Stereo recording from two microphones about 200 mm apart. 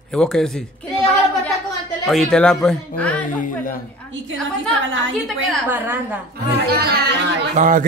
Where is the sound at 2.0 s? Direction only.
Centre (ahead or behind).